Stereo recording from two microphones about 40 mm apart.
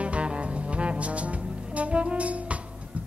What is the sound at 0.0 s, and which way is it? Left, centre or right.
Music, right.